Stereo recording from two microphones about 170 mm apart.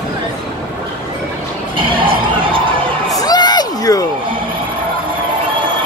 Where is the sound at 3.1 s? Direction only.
25° left (ahead or behind).